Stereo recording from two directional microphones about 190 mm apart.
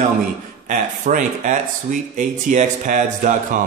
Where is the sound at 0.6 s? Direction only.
45° right (ahead or behind).